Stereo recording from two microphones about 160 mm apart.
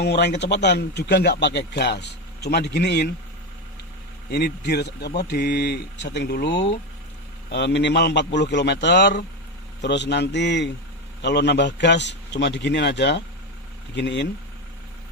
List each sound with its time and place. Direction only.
0.0 s a man's voice: 90° left
4.3 s a man's voice: 85° left